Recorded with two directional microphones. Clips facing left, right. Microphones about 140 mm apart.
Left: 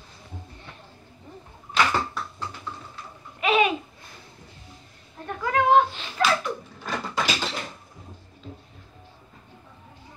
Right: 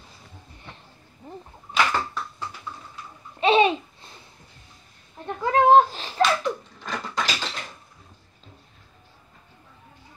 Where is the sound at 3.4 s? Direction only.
30° right (ahead or behind).